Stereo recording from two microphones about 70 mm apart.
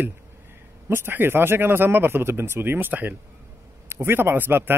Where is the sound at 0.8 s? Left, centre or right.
Right.